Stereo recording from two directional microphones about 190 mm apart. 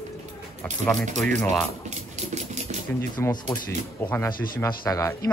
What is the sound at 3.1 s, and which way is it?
Speech, 20° left (ahead or behind).